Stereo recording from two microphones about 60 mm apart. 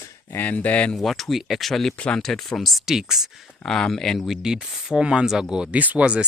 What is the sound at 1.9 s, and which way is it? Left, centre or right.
Speech, centre.